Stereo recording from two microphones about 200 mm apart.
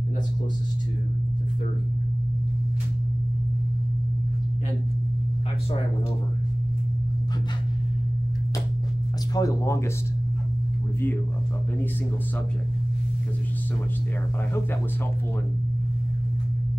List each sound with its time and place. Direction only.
9.3 s speech: 15° left (ahead or behind)